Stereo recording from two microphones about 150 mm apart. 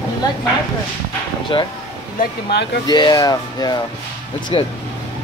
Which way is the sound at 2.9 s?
25° left (ahead or behind).